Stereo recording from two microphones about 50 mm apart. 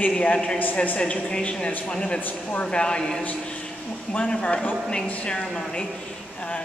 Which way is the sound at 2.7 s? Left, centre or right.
Centre.